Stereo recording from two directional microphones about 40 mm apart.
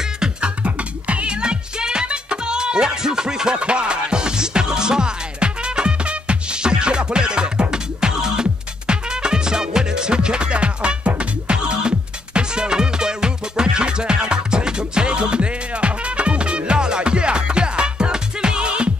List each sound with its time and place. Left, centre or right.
0.7 s music: right; by 3.5 s centre
3.5 s music: right